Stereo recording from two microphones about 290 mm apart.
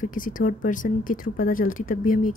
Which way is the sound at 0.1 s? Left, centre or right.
Left.